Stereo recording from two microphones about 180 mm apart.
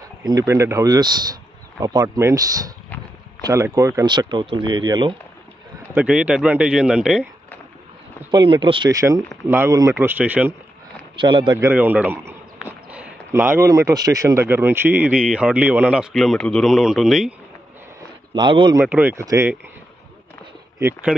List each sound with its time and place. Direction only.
0.2 s speech: 20° right (ahead or behind)
5.9 s a man's voice: 5° right (ahead or behind)
8.3 s a man's voice: 25° right (ahead or behind); by 10.5 s 10° right (ahead or behind)
11.1 s speech: 25° right (ahead or behind)
11.6 s a man's voice: 10° right (ahead or behind)
18.3 s speech: 25° right (ahead or behind)
18.8 s a man's voice: 10° right (ahead or behind)